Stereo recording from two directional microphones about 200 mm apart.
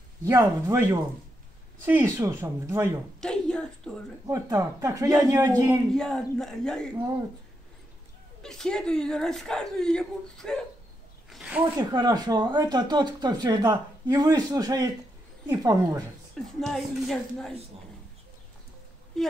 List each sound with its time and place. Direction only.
0.2 s speech: 15° right (ahead or behind)
1.9 s speech: 10° right (ahead or behind)
3.2 s a sound: 5° left (ahead or behind)
4.3 s speech: 15° right (ahead or behind)
5.9 s speech: 5° left (ahead or behind)
8.4 s speech: 5° left (ahead or behind)
11.2 s zipper: 5° right (ahead or behind)
11.8 s speech: 20° right (ahead or behind)
16.5 s speech: centre (ahead or behind)